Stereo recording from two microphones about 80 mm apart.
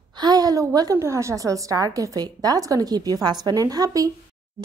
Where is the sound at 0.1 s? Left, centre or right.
Right.